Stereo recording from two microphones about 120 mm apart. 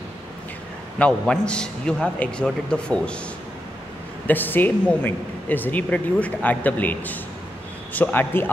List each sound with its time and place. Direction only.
0.9 s speech: 10° left (ahead or behind)
4.3 s speech: 15° left (ahead or behind)